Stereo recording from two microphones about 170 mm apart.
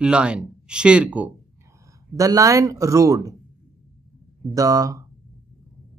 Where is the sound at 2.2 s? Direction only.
20° right (ahead or behind).